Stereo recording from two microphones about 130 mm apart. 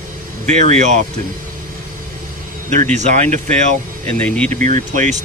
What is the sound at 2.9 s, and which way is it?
Speech, 65° right (ahead or behind).